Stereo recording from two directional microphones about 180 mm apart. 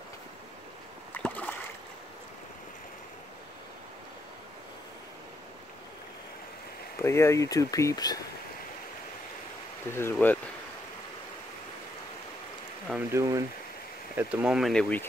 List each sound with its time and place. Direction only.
1.1 s splash: 10° left (ahead or behind)
7.0 s speech: 15° left (ahead or behind)
9.9 s speech: 10° left (ahead or behind)
12.8 s speech: 5° right (ahead or behind)